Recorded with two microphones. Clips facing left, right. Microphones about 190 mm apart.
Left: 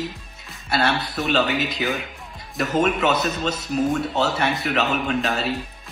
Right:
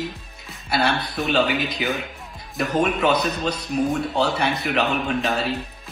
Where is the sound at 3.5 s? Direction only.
25° left (ahead or behind).